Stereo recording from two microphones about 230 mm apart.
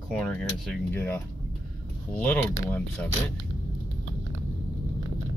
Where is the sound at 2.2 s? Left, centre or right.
Centre.